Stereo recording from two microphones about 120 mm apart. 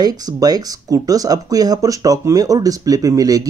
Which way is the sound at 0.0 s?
30° right (ahead or behind).